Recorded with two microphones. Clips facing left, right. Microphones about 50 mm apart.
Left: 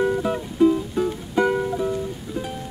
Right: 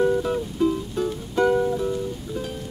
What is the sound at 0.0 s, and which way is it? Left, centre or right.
Music, left.